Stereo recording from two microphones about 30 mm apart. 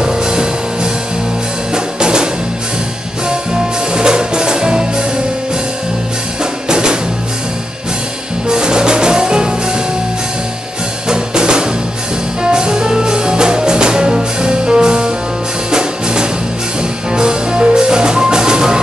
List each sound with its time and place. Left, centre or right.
0.0 s music: right
1.7 s music: right
3.9 s music: right
6.7 s music: right
8.5 s music: right
11.1 s drum kit: right
12.4 s music: right